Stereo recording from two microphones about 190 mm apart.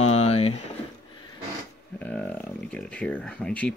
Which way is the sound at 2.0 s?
5° left (ahead or behind).